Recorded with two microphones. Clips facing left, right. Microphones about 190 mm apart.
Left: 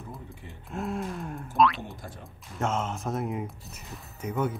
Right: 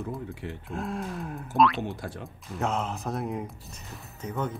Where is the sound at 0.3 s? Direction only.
90° right.